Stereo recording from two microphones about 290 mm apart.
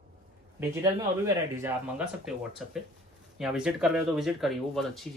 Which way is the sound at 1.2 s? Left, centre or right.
Centre.